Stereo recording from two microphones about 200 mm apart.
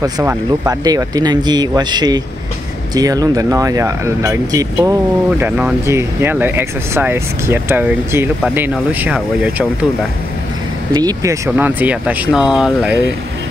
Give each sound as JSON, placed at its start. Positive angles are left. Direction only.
{"t": 0.0, "sound": "speech", "side_deg": -15}
{"t": 10.9, "sound": "speech", "side_deg": -20}